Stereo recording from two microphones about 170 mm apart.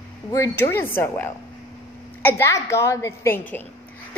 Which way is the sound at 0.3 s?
15° left (ahead or behind).